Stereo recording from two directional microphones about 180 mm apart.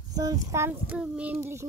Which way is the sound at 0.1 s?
20° right (ahead or behind).